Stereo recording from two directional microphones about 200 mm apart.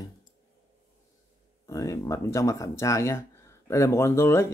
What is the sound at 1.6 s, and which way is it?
Speech, 15° left (ahead or behind).